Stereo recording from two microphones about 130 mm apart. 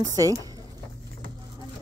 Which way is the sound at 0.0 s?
25° right (ahead or behind).